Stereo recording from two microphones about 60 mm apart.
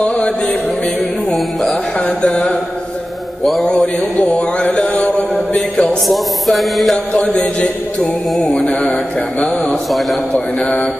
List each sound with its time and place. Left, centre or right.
0.0 s mantra: centre
1.3 s music: centre
2.0 s mantra: left
3.7 s mantra: left
6.0 s music: centre
8.0 s a sound: centre
9.8 s music: centre
10.6 s a sound: centre